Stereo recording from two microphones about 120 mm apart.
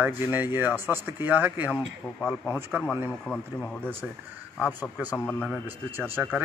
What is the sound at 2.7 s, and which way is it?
Speech, 15° right (ahead or behind).